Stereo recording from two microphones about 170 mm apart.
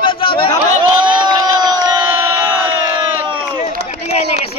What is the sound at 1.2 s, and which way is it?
Crowd, 25° right (ahead or behind).